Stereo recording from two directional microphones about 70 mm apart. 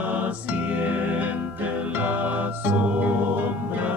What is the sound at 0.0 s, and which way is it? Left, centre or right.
Music, right.